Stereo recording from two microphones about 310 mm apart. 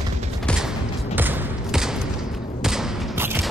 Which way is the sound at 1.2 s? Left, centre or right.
Centre.